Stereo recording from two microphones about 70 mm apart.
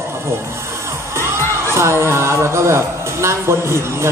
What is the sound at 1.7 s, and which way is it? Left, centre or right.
Speech, right.